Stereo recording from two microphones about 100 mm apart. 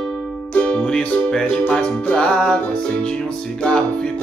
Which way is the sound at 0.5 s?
10° left (ahead or behind).